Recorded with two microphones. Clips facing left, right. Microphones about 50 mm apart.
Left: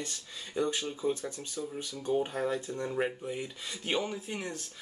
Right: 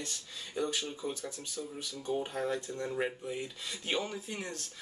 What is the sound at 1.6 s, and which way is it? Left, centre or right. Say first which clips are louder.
Speech: left 3 dB; centre.